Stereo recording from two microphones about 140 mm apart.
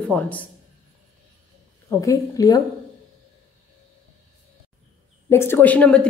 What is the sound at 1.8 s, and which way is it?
Speech, 20° left (ahead or behind).